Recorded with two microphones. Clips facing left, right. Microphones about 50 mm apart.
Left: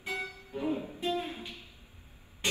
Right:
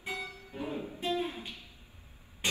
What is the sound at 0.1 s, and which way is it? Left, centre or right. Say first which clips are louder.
Music: left 3 dB; left.